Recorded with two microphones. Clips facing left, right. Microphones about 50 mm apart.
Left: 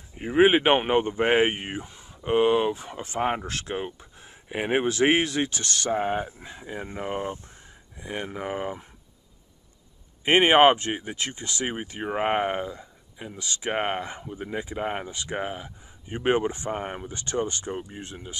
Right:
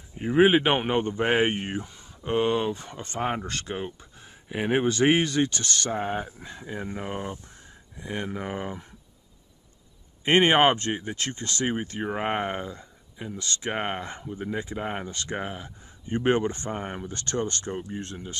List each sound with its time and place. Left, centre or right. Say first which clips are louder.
0.1 s speech: even; centre
7.2 s speech: left 3 dB; left
8.0 s speech: even; centre
10.2 s speech: left 2 dB; centre